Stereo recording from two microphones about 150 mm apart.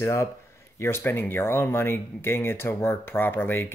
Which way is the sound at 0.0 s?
20° left (ahead or behind).